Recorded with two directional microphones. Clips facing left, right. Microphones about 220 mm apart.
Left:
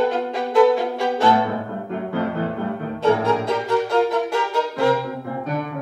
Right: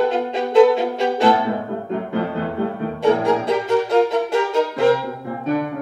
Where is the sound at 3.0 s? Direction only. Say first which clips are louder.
Right 2 dB; 15° right (ahead or behind).